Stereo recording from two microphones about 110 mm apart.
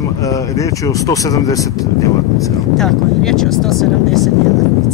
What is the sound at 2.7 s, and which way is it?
Speech, 5° left (ahead or behind).